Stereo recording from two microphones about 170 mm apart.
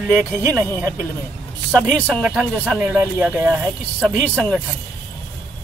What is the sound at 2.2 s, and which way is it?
Speech, 10° right (ahead or behind).